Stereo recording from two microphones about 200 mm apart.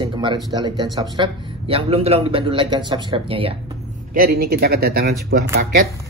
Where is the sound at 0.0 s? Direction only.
25° right (ahead or behind).